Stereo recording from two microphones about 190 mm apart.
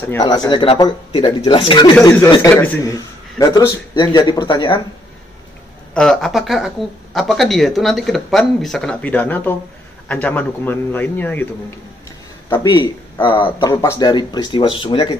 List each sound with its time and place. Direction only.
0.5 s a man's voice: 25° left (ahead or behind)
5.9 s a man's voice: centre (ahead or behind)
12.4 s a man's voice: 25° left (ahead or behind)